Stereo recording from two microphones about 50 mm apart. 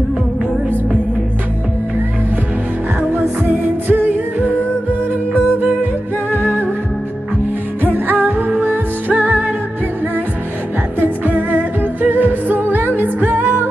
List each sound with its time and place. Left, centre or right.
3.4 s music: right
7.8 s music: right
11.0 s music: right